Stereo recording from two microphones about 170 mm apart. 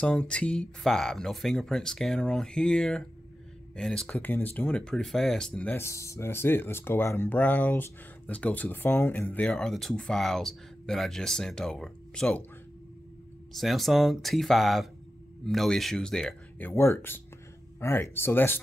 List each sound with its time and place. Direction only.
0.0 s speech: 5° left (ahead or behind)
13.5 s speech: centre (ahead or behind)